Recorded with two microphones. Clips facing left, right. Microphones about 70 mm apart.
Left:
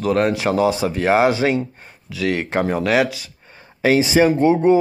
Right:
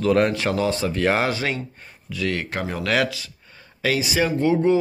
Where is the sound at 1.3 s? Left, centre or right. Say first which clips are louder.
Left 7 dB; left.